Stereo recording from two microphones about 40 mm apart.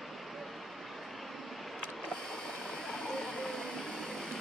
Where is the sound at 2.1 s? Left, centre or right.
Centre.